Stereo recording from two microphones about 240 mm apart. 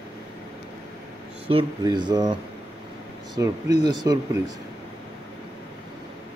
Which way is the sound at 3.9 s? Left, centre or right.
Centre.